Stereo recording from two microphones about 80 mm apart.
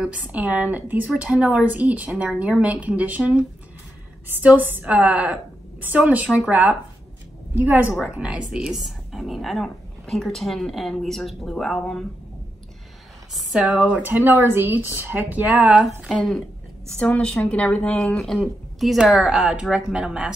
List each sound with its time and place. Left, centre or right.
0.0 s a woman's voice: centre
7.9 s a woman's voice: centre
9.1 s speech: centre
13.3 s a sound: centre
13.6 s a woman's voice: centre
15.5 s a woman's voice: centre
17.8 s a woman's voice: centre